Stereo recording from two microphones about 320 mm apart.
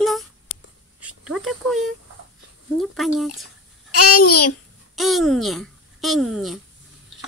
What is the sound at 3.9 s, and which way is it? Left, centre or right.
Speech, left.